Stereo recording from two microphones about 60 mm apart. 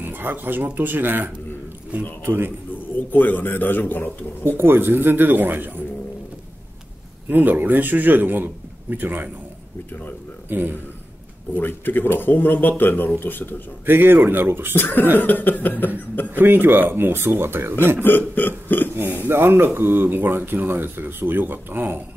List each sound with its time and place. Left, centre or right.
0.0 s speech: right
3.1 s speech: left
4.4 s speech: right
7.2 s speech: right
10.5 s speech: right
11.5 s speech: left
13.8 s speech: right
14.8 s speech: left
16.3 s speech: right
18.0 s speech: left
18.9 s speech: right